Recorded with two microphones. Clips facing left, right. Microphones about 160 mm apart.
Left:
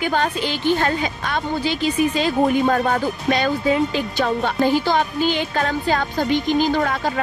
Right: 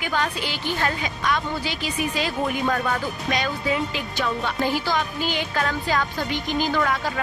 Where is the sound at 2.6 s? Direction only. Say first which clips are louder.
Left 5 dB; 40° left (ahead or behind).